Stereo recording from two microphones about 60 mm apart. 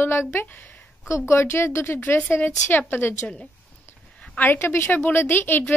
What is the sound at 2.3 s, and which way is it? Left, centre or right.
Speech, left.